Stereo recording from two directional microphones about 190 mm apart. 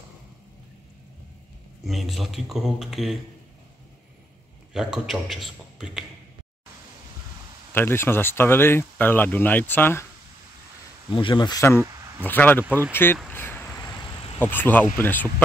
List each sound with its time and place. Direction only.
1.9 s a man's voice: centre (ahead or behind)
4.7 s a man's voice: centre (ahead or behind)
7.7 s speech: 10° left (ahead or behind)
11.1 s speech: 25° left (ahead or behind)
13.3 s a sound: 10° left (ahead or behind)
14.4 s speech: 10° left (ahead or behind)